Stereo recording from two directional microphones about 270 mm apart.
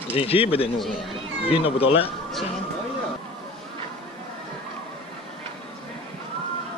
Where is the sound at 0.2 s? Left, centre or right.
Left.